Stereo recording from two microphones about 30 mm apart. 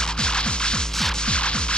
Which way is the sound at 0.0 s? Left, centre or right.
Left.